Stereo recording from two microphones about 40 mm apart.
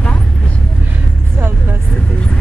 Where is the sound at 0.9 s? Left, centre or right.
Right.